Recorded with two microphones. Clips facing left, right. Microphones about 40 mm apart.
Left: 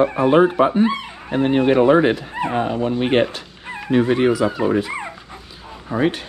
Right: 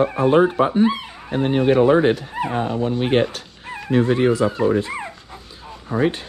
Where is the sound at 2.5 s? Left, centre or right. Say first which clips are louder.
Left 2 dB; left.